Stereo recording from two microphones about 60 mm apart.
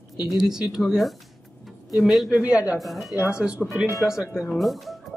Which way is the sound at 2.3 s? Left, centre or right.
Centre.